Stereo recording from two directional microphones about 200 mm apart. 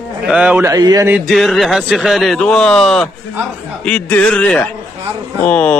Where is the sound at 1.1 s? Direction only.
Centre (ahead or behind).